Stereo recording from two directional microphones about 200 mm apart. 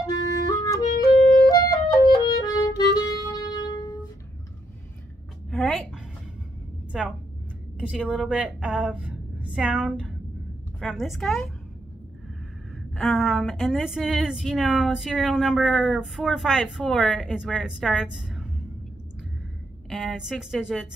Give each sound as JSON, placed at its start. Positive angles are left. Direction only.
{"t": 0.0, "sound": "music", "side_deg": 15}
{"t": 1.4, "sound": "clarinet", "side_deg": 20}
{"t": 5.5, "sound": "a sound", "side_deg": 0}
{"t": 6.9, "sound": "a sound", "side_deg": -5}
{"t": 7.9, "sound": "speech", "side_deg": -5}
{"t": 12.9, "sound": "speech", "side_deg": 0}
{"t": 19.9, "sound": "a woman's voice", "side_deg": 0}